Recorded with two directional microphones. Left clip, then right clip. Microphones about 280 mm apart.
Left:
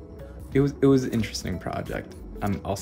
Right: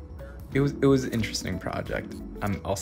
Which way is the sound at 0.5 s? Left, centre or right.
Centre.